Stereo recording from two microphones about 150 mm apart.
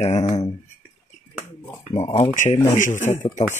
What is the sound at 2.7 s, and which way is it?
Speech, 55° left (ahead or behind).